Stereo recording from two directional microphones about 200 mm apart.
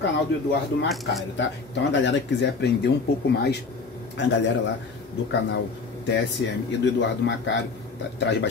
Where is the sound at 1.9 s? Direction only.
65° left (ahead or behind).